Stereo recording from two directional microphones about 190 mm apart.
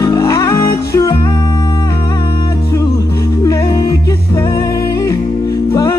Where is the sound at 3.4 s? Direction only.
15° left (ahead or behind).